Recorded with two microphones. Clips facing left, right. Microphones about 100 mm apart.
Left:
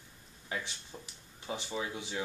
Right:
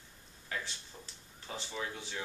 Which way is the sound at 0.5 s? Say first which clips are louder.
Left 2 dB; 10° left (ahead or behind).